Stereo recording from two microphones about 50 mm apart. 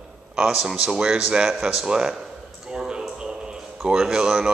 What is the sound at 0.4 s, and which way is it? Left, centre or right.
Speech, centre.